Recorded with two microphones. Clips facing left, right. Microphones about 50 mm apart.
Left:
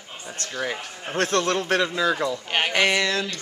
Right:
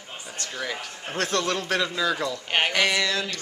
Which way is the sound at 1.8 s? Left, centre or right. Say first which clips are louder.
Left 3 dB; centre.